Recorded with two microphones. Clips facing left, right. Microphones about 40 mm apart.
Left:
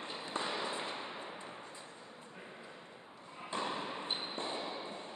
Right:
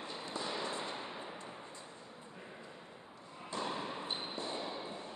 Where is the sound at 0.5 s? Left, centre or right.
Centre.